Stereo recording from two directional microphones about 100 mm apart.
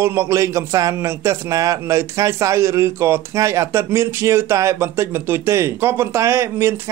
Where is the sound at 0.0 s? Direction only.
30° right (ahead or behind).